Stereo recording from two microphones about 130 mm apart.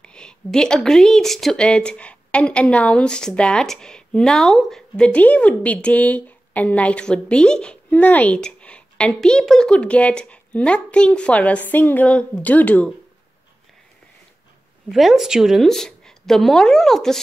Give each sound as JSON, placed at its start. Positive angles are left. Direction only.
{"t": 0.0, "sound": "a woman's voice", "side_deg": 5}
{"t": 14.9, "sound": "a woman's voice", "side_deg": 0}